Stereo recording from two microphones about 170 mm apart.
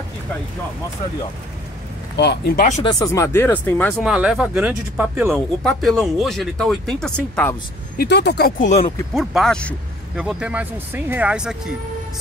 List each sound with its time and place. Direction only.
2.1 s speech: 75° left (ahead or behind)
2.8 s speech: 20° left (ahead or behind)
4.0 s speech: 5° right (ahead or behind)
5.3 s speech: centre (ahead or behind)
8.0 s speech: 80° left; by 8.8 s 50° left (ahead or behind)
9.1 s speech: centre (ahead or behind)
10.1 s speech: 5° right (ahead or behind)